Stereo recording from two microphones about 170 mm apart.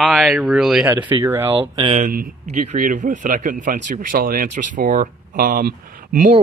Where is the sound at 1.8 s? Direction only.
35° right (ahead or behind).